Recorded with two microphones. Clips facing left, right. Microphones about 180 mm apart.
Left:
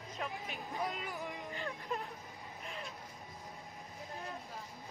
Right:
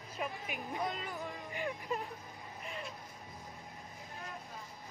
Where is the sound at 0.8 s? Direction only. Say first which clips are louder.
Left 1 dB; centre (ahead or behind).